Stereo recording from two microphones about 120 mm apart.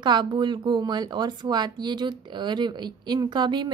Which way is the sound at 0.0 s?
40° right (ahead or behind).